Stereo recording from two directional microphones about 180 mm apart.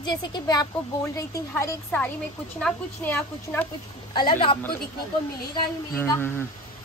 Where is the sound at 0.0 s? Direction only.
25° left (ahead or behind).